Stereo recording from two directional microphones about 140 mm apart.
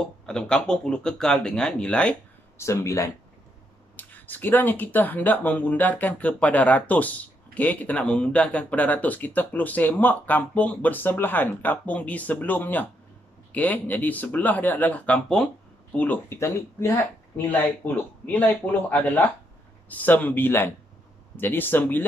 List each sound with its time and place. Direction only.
0.3 s speech: 5° left (ahead or behind)
2.5 s speech: 20° left (ahead or behind)